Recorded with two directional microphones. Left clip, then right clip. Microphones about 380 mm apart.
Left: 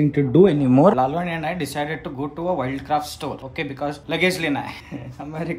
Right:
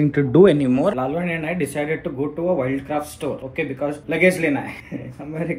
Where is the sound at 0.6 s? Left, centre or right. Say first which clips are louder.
Left 4 dB; left.